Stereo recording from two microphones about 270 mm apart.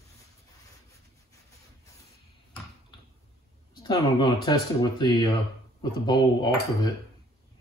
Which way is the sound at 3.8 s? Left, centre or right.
Centre.